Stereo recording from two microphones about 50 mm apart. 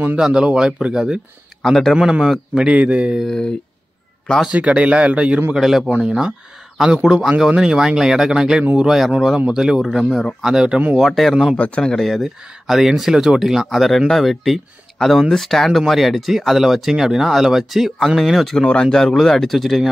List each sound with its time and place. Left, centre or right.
0.2 s speech: centre
1.6 s speech: centre
2.0 s speech: centre
2.5 s a man's voice: right
4.5 s a man's voice: right
5.6 s speech: centre
5.9 s a man's voice: right
9.8 s speech: centre
10.4 s speech: centre
11.0 s speech: centre
11.5 s a man's voice: left
11.8 s speech: centre
12.2 s speech: centre
18.6 s speech: centre